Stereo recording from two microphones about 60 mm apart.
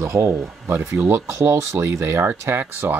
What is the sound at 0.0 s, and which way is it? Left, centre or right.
Speech, right.